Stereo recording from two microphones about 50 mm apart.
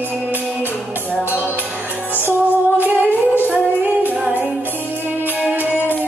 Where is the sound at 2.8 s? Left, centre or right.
Right.